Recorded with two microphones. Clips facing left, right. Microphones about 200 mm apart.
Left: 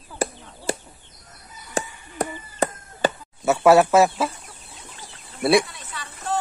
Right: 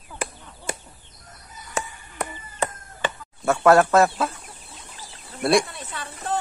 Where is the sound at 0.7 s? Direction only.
30° left (ahead or behind).